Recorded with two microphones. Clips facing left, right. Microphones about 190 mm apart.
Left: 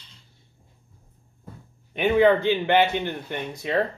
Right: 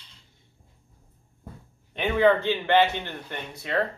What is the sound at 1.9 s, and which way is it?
Speech, 15° left (ahead or behind).